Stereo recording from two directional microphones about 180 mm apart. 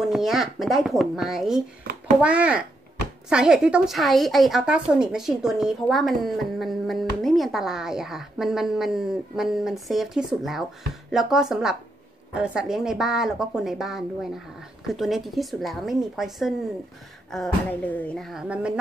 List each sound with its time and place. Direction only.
0.1 s a woman's voice: centre (ahead or behind)
1.9 s a sound: 55° right (ahead or behind)
2.2 s a child's voice: 5° right (ahead or behind)